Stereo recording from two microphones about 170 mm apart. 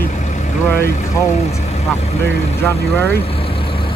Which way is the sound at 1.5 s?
40° left (ahead or behind).